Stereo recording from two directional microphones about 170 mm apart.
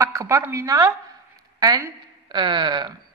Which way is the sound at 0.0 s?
20° right (ahead or behind).